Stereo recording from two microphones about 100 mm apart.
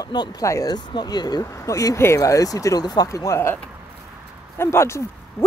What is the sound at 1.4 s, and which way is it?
Speech, 30° left (ahead or behind).